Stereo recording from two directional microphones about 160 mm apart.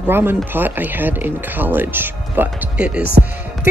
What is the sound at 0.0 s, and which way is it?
Speech, 15° right (ahead or behind).